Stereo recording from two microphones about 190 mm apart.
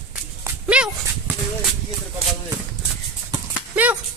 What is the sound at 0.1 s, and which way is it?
Dog, 5° right (ahead or behind).